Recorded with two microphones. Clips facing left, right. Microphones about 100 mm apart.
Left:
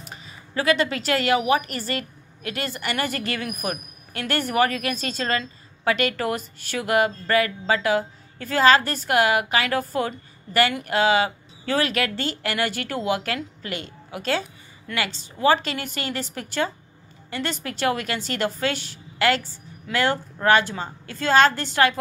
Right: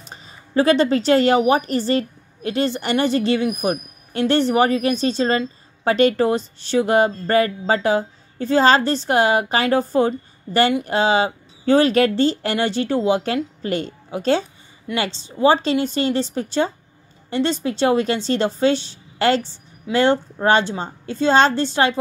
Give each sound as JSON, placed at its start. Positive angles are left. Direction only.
{"t": 0.0, "sound": "a woman's voice", "side_deg": -30}